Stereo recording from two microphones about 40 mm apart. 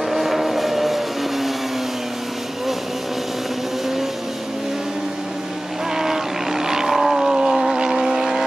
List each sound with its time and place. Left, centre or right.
0.1 s vehicle: centre
5.9 s vehicle: centre
7.3 s a sound: centre
7.7 s vehicle: centre